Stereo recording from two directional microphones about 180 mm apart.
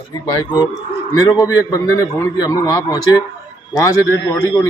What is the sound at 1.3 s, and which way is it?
A man's voice, 20° left (ahead or behind).